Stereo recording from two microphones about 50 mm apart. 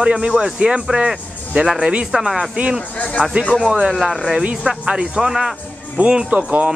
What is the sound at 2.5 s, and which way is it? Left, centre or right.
A man's voice, right.